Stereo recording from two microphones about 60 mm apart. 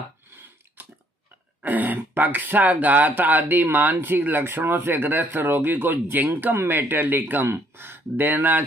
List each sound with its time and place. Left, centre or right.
0.8 s biting: right
1.6 s speech: right
7.4 s speech: right